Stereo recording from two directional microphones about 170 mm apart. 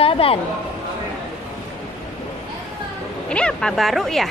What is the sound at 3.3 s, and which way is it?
Speech, 5° left (ahead or behind).